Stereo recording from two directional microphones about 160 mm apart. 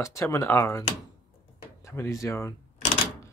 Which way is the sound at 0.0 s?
20° left (ahead or behind).